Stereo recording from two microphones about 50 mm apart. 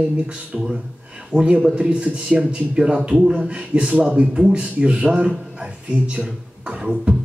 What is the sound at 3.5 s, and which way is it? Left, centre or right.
Speech, right.